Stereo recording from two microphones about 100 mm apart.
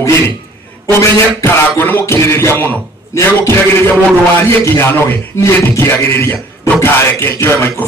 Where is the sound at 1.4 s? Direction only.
20° left (ahead or behind).